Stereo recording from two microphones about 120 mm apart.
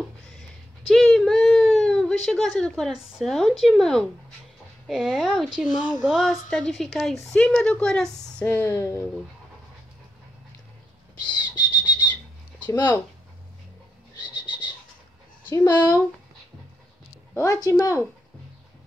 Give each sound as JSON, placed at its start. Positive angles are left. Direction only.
{"t": 0.4, "sound": "a sound", "side_deg": 5}
{"t": 1.1, "sound": "a woman's voice", "side_deg": 5}
{"t": 8.6, "sound": "speech", "side_deg": 25}
{"t": 11.2, "sound": "bird", "side_deg": 40}
{"t": 12.6, "sound": "speech", "side_deg": 15}
{"t": 14.2, "sound": "a sound", "side_deg": 40}
{"t": 15.5, "sound": "speech", "side_deg": 30}
{"t": 17.4, "sound": "speech", "side_deg": 25}